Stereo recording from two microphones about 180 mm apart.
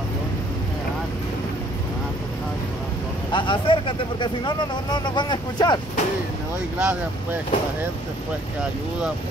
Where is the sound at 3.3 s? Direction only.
25° left (ahead or behind).